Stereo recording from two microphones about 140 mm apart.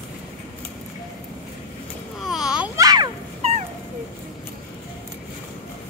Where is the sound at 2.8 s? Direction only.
25° right (ahead or behind).